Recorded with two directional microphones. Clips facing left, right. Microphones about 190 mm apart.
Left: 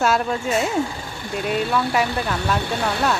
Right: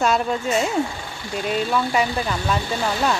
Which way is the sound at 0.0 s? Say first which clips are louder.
Even; 5° left (ahead or behind).